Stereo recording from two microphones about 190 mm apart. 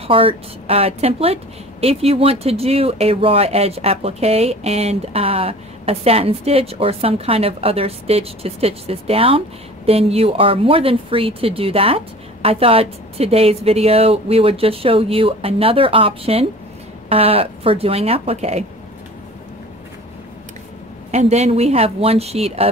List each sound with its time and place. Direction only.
0.0 s a woman's voice: 30° right (ahead or behind)
21.1 s a woman's voice: 35° right (ahead or behind)